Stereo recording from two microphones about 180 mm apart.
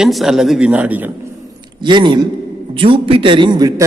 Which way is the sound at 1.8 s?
25° right (ahead or behind).